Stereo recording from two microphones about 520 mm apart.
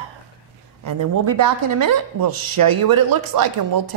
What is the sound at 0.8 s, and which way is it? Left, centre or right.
Speech, right.